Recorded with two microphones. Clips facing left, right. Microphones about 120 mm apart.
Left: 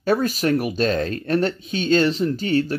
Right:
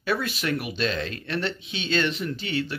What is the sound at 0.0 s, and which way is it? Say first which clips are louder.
Speech: left 7 dB; 40° left (ahead or behind).